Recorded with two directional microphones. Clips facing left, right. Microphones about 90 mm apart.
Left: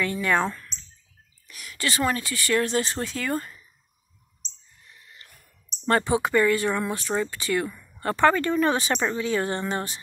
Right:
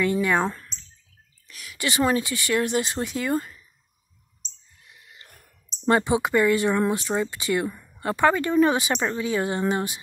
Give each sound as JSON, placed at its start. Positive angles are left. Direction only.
{"t": 0.0, "sound": "speech", "side_deg": -15}
{"t": 1.5, "sound": "speech", "side_deg": 0}
{"t": 1.8, "sound": "speech", "side_deg": -20}
{"t": 4.8, "sound": "a sound", "side_deg": -15}
{"t": 5.9, "sound": "speech", "side_deg": -15}
{"t": 8.0, "sound": "speech", "side_deg": -10}